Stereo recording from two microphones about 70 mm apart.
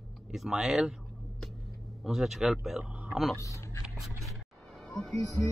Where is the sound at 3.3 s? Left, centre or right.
Left.